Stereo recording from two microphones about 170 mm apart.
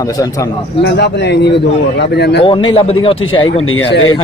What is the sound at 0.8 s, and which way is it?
Speech, 80° left.